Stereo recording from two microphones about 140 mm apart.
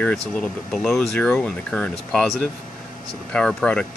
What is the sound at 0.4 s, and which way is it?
Speech, 5° left (ahead or behind).